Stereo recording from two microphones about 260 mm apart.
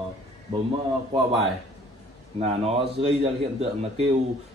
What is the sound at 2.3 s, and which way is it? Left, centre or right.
A man's voice, right.